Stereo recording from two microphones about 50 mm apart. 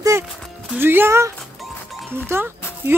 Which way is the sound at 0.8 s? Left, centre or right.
Right.